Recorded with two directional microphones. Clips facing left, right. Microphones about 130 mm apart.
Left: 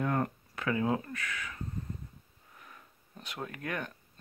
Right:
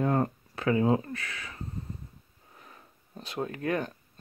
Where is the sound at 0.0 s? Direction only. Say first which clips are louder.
Right 4 dB; 30° right (ahead or behind).